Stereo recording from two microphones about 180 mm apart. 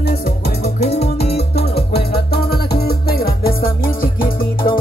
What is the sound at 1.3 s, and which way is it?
Music, 65° left (ahead or behind).